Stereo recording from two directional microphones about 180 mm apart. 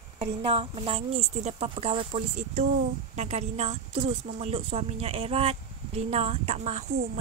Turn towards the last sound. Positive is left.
turn(degrees=-40)  # may be behind; listen again after turning